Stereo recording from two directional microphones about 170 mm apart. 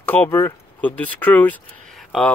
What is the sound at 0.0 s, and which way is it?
Speech, 10° left (ahead or behind).